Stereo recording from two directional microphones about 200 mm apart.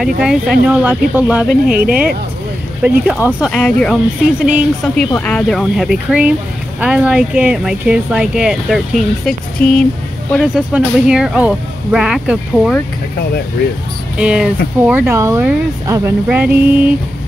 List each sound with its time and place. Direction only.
0.2 s speech: 5° right (ahead or behind)
1.7 s speech: 45° right (ahead or behind)
2.8 s speech: 5° right (ahead or behind)
10.4 s speech: 5° right (ahead or behind)
14.1 s speech: 5° right (ahead or behind)